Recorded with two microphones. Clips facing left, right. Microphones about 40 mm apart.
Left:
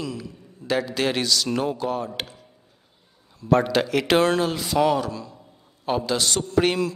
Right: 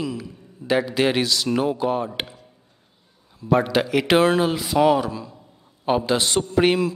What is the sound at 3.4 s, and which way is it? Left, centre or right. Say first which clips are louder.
Speech: even; centre.